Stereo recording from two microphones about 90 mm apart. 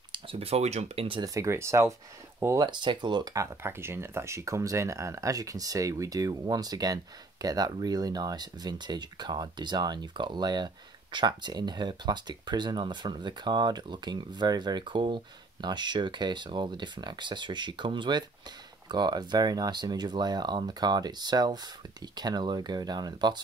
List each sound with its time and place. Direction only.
0.1 s a sound: 90° right
0.9 s speech: 70° right (ahead or behind)
1.2 s speech: 35° right (ahead or behind)
2.6 s speech: 55° right (ahead or behind)
3.3 s speech: 25° right (ahead or behind); by 23.4 s 50° right (ahead or behind)